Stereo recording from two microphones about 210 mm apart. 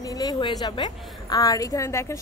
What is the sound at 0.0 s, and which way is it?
A woman's voice, 15° left (ahead or behind).